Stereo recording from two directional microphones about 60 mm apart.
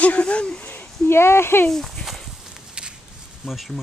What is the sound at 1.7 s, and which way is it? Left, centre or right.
Speech, centre.